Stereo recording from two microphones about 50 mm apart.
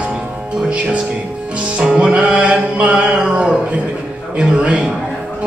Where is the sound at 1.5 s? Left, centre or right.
Right.